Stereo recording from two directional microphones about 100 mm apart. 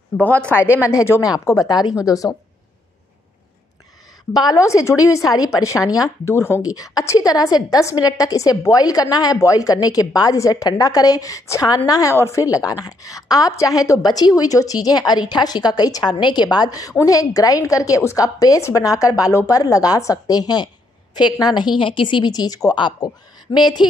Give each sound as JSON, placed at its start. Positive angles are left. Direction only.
{"t": 0.2, "sound": "a woman's voice", "side_deg": 15}
{"t": 4.3, "sound": "a woman's voice", "side_deg": 40}
{"t": 6.6, "sound": "a woman's voice", "side_deg": 35}